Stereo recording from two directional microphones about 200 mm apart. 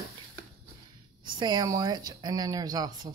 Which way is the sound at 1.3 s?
20° right (ahead or behind).